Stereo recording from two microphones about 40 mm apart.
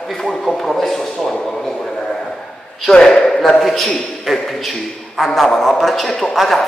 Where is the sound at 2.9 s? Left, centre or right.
Centre.